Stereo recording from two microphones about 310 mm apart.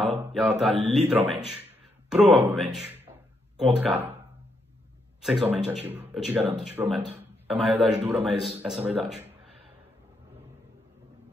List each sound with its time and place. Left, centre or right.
0.3 s a man's voice: centre
2.4 s a man's voice: centre
5.2 s a man's voice: centre